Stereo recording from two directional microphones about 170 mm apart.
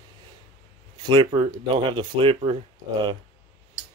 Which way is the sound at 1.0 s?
30° right (ahead or behind).